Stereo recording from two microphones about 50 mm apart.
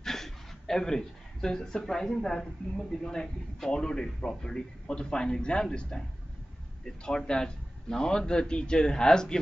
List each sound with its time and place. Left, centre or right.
0.0 s speech: centre